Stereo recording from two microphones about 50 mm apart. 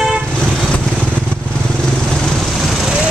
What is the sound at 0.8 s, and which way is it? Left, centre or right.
Motorcycle, right.